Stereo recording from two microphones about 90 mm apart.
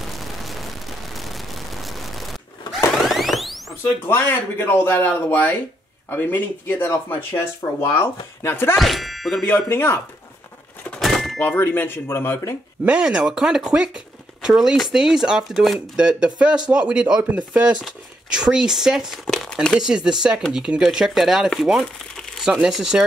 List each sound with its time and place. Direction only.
0.0 s a sound: centre (ahead or behind)
4.1 s speech: 25° left (ahead or behind)
8.7 s speech: centre (ahead or behind)
9.7 s speech: 25° left (ahead or behind)
11.0 s a sound: centre (ahead or behind)
11.3 s speech: 20° left (ahead or behind)
12.8 s speech: 10° right (ahead or behind)